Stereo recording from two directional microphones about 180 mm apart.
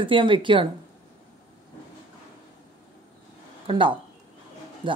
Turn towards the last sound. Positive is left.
turn(degrees=-25)  # may be behind; listen again after turning